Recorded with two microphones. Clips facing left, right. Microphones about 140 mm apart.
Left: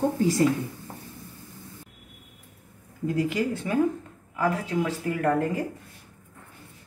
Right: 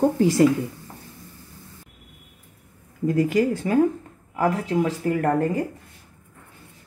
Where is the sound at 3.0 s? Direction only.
45° right (ahead or behind).